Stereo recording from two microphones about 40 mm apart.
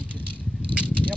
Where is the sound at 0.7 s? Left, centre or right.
Right.